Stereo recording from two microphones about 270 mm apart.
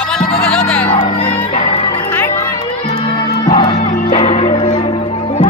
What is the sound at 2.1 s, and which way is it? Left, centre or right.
Music, centre.